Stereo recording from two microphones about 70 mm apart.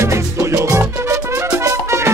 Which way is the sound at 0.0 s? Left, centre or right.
Right.